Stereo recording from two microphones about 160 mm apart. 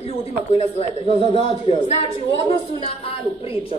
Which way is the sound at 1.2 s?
40° right (ahead or behind).